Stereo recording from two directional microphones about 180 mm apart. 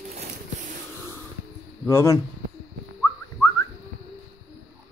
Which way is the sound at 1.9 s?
15° left (ahead or behind).